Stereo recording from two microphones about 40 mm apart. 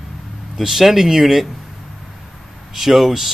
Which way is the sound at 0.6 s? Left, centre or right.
Centre.